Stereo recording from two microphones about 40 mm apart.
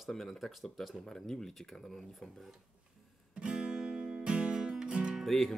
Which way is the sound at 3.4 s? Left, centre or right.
Centre.